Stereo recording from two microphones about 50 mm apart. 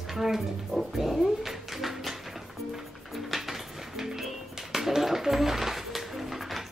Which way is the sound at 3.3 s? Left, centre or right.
Centre.